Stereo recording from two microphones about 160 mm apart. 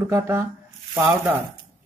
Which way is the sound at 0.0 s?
15° right (ahead or behind).